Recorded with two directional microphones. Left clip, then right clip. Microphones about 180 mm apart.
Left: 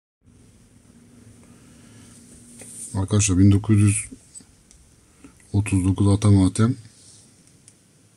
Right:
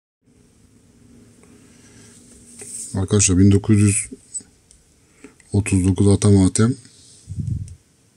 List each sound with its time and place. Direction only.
2.9 s speech: 20° right (ahead or behind)
5.2 s speech: 20° right (ahead or behind)